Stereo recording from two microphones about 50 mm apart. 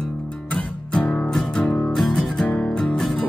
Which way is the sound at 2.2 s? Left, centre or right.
Centre.